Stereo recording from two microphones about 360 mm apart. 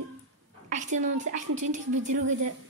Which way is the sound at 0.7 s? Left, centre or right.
Right.